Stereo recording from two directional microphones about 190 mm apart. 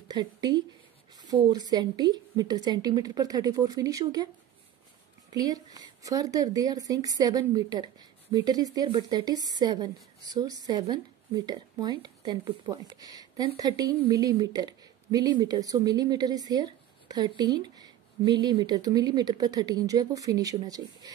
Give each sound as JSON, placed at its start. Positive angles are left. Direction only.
{"t": 0.1, "sound": "speech", "side_deg": -20}
{"t": 5.3, "sound": "speech", "side_deg": -20}